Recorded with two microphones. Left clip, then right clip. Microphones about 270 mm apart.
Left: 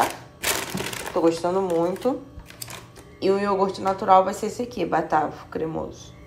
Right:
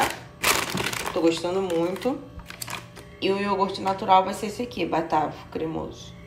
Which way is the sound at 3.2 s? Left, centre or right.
Centre.